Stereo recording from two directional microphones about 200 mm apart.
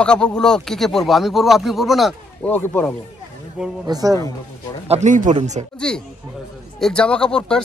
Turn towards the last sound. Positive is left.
turn(degrees=5)  # may be behind; listen again after turning